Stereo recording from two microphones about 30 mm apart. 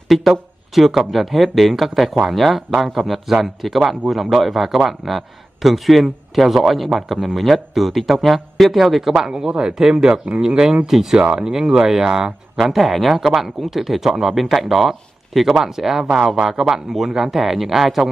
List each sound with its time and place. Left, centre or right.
0.1 s speech: centre
9.1 s speech: centre
9.8 s speech: centre
10.0 s speech: right
10.9 s speech: centre
11.3 s speech: right
12.5 s speech: centre